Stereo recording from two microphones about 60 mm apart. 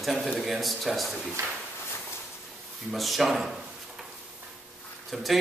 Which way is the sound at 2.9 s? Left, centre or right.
Centre.